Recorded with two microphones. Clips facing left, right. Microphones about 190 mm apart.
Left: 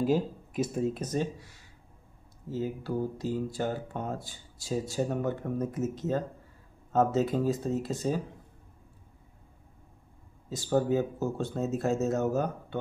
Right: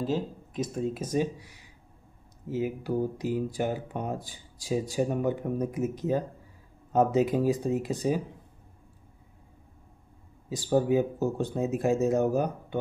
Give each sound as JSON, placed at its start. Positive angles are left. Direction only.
{"t": 0.0, "sound": "speech", "side_deg": 10}
{"t": 1.0, "sound": "speech", "side_deg": -10}
{"t": 10.5, "sound": "speech", "side_deg": -15}